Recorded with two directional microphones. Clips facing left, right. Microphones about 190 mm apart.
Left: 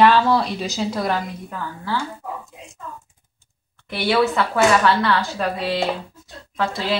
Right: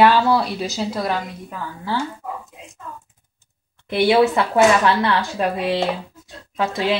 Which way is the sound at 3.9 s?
20° right (ahead or behind).